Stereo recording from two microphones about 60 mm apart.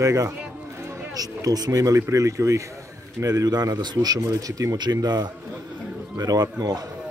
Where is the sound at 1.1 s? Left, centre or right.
Right.